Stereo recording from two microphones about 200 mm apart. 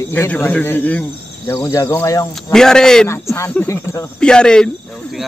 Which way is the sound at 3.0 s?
15° left (ahead or behind).